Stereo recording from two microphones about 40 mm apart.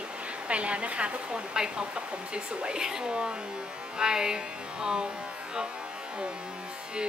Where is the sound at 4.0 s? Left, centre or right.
Centre.